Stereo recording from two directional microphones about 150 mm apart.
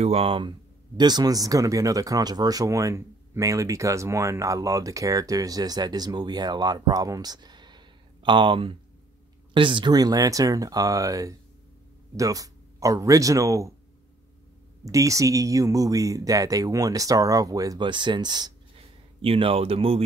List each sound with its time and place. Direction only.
0.0 s speech: 40° right (ahead or behind); by 13.7 s 20° right (ahead or behind)
14.9 s a man's voice: 20° right (ahead or behind); by 20.0 s 40° right (ahead or behind)